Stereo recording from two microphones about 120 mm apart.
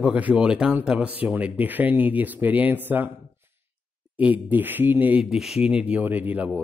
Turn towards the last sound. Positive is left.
turn(degrees=-15)  # may be behind; listen again after turning